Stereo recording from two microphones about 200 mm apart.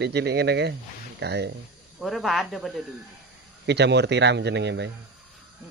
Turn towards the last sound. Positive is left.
turn(degrees=-60)  # may be behind; listen again after turning